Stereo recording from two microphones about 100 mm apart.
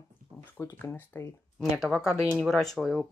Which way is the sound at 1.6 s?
5° left (ahead or behind).